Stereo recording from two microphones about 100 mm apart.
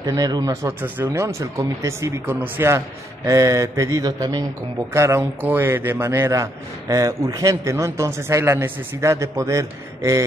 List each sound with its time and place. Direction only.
0.0 s a man's voice: 40° right (ahead or behind); by 2.8 s 25° right (ahead or behind)
3.3 s speech: 35° right (ahead or behind)
4.9 s speech: 30° right (ahead or behind)
5.4 s a man's voice: 20° right (ahead or behind)